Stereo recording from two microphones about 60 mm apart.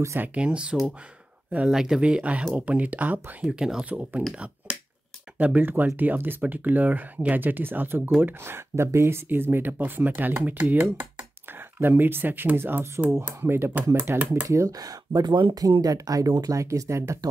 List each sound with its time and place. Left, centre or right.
0.2 s speech: right
1.7 s speech: centre
2.0 s speech: centre
3.4 s speech: centre
3.9 s speech: right
5.4 s speech: right
14.7 s speech: right